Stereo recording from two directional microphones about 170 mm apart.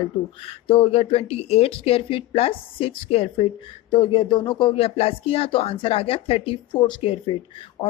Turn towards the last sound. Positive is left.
turn(degrees=30)  # may be behind; listen again after turning